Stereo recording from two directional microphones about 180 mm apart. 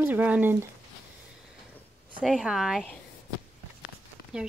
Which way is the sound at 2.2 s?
Centre (ahead or behind).